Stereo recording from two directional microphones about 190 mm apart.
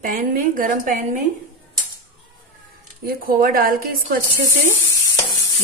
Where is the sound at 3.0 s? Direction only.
50° right (ahead or behind).